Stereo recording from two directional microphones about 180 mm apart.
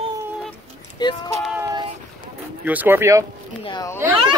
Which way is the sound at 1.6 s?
20° right (ahead or behind).